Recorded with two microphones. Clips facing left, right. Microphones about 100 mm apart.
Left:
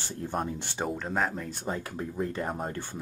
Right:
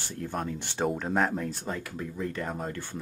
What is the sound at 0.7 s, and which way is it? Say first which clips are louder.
Speech: right 4 dB; centre (ahead or behind).